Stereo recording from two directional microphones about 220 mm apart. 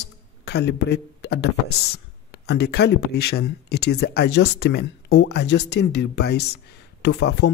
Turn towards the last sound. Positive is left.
turn(degrees=50)  # may be behind; listen again after turning